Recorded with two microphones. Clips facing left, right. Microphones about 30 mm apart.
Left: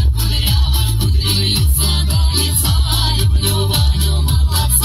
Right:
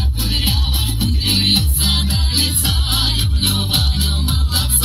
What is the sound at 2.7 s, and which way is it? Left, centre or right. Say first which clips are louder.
Music: even; right.